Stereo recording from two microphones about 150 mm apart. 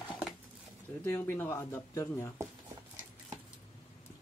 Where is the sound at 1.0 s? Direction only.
15° left (ahead or behind).